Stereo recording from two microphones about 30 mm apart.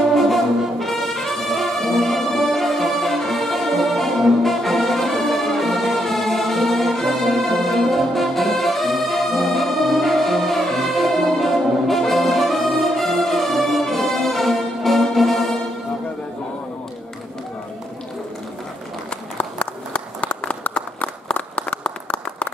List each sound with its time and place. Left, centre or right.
0.1 s brass instrument: centre
19.3 s a sound: left
21.0 s applause: left